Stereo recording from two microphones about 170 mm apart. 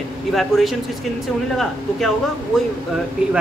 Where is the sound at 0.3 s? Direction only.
Centre (ahead or behind).